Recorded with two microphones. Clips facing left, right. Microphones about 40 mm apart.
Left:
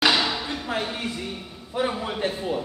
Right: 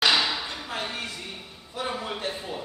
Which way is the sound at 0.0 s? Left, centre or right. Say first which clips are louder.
Left 2 dB; centre.